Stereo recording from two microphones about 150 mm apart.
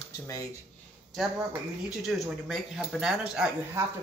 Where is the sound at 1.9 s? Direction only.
Centre (ahead or behind).